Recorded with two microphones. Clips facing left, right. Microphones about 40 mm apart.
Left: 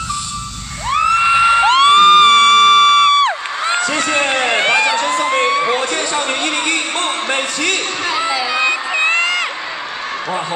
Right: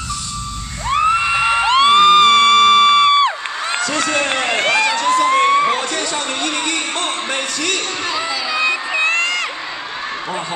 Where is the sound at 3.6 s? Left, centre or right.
Centre.